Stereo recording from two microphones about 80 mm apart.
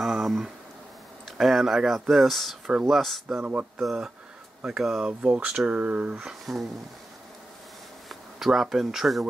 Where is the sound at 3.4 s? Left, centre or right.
Centre.